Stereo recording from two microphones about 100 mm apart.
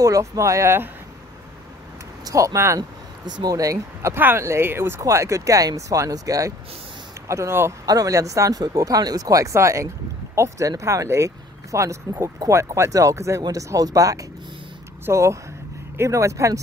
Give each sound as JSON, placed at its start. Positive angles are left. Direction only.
{"t": 0.0, "sound": "speech", "side_deg": -35}
{"t": 2.2, "sound": "speech", "side_deg": -30}
{"t": 2.8, "sound": "speech", "side_deg": -45}
{"t": 7.8, "sound": "speech", "side_deg": -35}